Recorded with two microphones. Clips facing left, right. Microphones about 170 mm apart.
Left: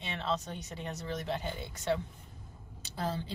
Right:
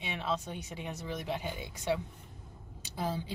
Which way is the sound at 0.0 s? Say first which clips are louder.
Even; 10° right (ahead or behind).